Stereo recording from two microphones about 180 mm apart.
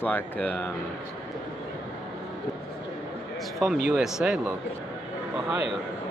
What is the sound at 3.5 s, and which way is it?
Speech, centre (ahead or behind).